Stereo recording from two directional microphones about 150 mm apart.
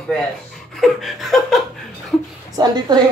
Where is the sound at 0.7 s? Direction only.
Centre (ahead or behind).